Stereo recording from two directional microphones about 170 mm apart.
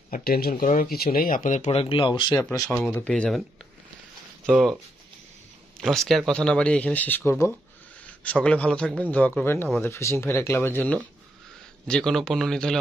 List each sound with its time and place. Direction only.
0.1 s speech: 60° left (ahead or behind); by 2.7 s 20° left (ahead or behind)
2.7 s speech: 10° left (ahead or behind)
4.5 s speech: 5° right (ahead or behind)
5.8 s speech: centre (ahead or behind)